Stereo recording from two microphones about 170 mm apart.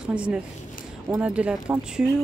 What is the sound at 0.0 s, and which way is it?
A woman's voice, 5° right (ahead or behind).